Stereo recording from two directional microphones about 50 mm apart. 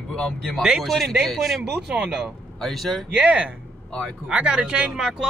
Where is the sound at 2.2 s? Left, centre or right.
Centre.